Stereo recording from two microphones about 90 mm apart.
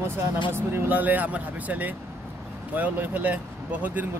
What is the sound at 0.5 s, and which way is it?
Speech, 25° right (ahead or behind).